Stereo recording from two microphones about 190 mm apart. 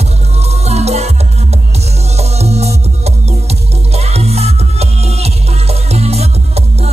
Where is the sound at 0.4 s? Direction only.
35° right (ahead or behind).